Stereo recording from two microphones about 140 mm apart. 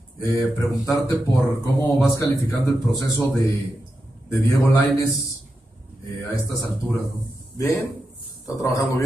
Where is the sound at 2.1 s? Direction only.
25° left (ahead or behind).